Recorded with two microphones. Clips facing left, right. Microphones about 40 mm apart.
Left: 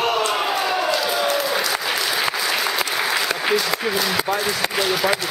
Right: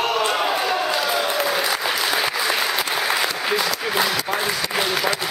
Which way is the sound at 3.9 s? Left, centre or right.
Centre.